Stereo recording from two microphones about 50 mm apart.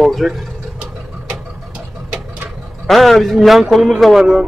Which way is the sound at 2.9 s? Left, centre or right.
Centre.